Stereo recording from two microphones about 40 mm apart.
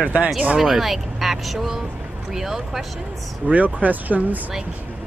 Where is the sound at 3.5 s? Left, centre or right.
Right.